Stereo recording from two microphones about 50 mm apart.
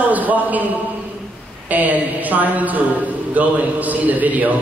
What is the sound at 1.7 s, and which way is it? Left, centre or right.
A man's voice, right.